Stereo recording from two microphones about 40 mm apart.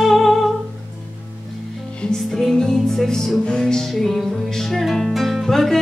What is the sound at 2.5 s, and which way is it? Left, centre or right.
Music, centre.